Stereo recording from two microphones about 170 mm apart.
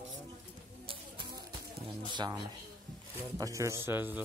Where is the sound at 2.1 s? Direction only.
25° right (ahead or behind).